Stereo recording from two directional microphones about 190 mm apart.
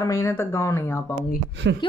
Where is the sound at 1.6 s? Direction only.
70° right (ahead or behind).